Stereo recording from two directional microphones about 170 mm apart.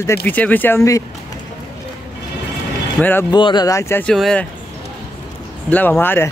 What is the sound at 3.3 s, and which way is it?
Speech, 25° left (ahead or behind).